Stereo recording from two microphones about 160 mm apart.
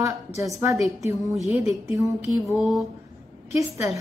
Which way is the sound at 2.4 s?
Centre (ahead or behind).